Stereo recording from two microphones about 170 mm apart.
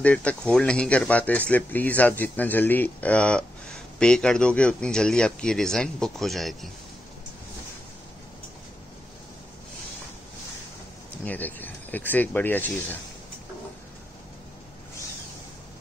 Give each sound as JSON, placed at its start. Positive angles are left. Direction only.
{"t": 0.0, "sound": "speech", "side_deg": 10}
{"t": 11.2, "sound": "speech", "side_deg": 10}